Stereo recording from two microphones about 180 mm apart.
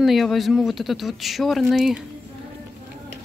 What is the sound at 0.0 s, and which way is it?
Speech, centre (ahead or behind).